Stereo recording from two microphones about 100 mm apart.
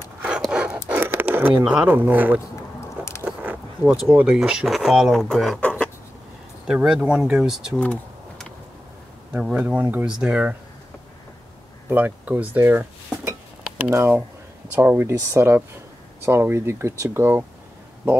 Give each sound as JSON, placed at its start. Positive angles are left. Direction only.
{"t": 0.5, "sound": "a sound", "side_deg": -10}
{"t": 1.6, "sound": "speech", "side_deg": -5}
{"t": 1.9, "sound": "speech", "side_deg": -20}
{"t": 3.3, "sound": "speech", "side_deg": -5}
{"t": 5.6, "sound": "a sound", "side_deg": 10}
{"t": 6.7, "sound": "speech", "side_deg": -5}
{"t": 7.8, "sound": "computer keyboard", "side_deg": 10}
{"t": 9.4, "sound": "speech", "side_deg": -10}
{"t": 11.9, "sound": "speech", "side_deg": -15}